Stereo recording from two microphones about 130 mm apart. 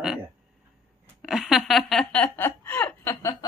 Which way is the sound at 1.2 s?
Centre (ahead or behind).